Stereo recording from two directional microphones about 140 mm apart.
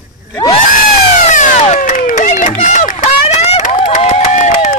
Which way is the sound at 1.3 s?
60° left (ahead or behind).